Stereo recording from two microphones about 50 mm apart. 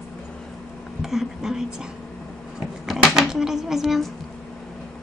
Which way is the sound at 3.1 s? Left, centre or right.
Centre.